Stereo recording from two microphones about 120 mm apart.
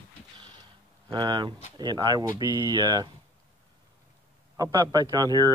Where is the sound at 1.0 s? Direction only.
35° right (ahead or behind).